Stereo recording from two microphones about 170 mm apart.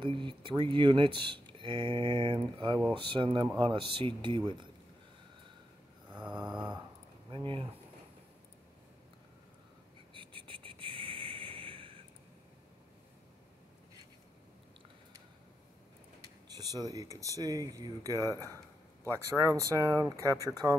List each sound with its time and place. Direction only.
0.0 s speech: 30° right (ahead or behind)
6.5 s speech: 25° right (ahead or behind)
10.1 s a sound: 30° right (ahead or behind)
16.5 s speech: 20° right (ahead or behind)